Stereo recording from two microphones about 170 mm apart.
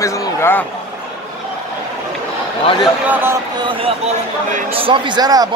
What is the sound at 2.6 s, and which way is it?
Speech, 30° left (ahead or behind).